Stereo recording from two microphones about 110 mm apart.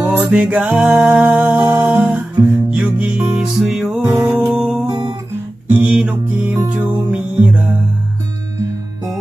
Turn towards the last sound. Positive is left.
turn(degrees=-15)  # may be behind; listen again after turning